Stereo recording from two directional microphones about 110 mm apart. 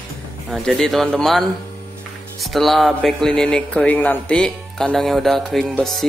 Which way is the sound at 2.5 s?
Centre (ahead or behind).